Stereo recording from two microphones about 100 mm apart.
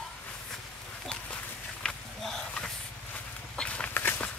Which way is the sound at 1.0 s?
10° left (ahead or behind).